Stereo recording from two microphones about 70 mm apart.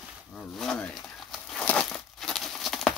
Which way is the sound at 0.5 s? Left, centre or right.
Centre.